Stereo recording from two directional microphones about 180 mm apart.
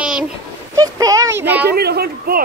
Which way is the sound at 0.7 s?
20° right (ahead or behind).